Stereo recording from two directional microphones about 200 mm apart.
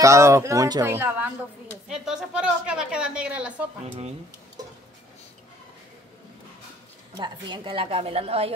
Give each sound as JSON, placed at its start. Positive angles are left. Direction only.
{"t": 0.0, "sound": "a woman's voice", "side_deg": -15}
{"t": 7.2, "sound": "a woman's voice", "side_deg": -25}